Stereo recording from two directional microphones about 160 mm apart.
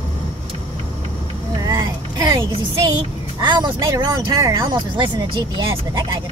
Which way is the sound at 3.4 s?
30° right (ahead or behind).